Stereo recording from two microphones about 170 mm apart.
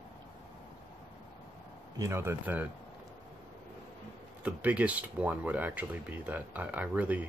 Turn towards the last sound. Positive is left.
turn(degrees=-10)  # may be behind; listen again after turning